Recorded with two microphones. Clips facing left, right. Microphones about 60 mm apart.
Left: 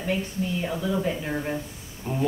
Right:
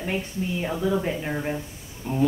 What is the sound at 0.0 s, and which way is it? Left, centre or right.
Speech, right.